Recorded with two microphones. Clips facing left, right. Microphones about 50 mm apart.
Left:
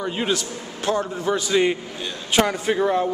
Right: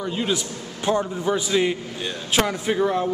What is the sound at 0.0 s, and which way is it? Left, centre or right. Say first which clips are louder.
Speech: left 1 dB; left.